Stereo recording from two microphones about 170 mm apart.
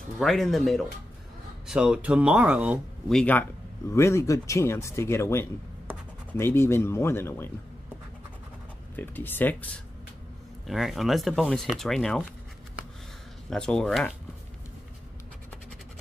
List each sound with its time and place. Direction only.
0.2 s speech: centre (ahead or behind)
3.2 s speech: 10° left (ahead or behind)
8.9 s speech: 10° left (ahead or behind)
10.7 s speech: centre (ahead or behind)
13.5 s speech: 5° left (ahead or behind)